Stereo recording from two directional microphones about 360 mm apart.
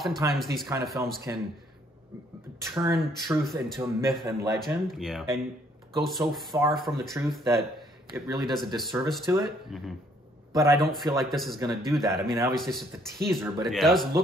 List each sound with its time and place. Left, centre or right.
0.0 s a man's voice: centre
2.6 s a man's voice: centre